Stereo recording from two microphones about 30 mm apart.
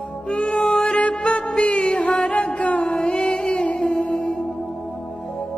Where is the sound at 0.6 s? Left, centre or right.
Left.